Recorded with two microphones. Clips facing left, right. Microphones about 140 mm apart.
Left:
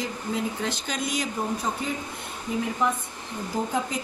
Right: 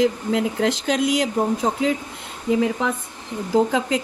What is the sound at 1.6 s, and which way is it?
Speech, 90° right.